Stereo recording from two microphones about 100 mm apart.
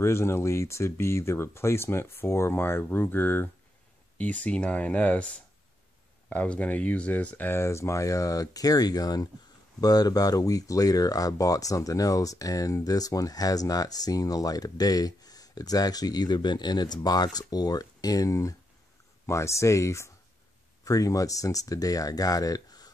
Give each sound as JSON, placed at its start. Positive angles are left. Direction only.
{"t": 0.0, "sound": "speech", "side_deg": 25}